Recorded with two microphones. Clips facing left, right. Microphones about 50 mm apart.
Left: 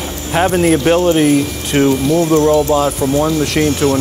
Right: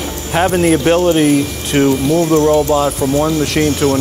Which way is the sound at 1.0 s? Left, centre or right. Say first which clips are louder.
Even; centre.